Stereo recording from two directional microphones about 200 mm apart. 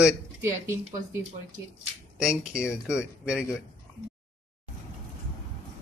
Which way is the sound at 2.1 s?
5° right (ahead or behind).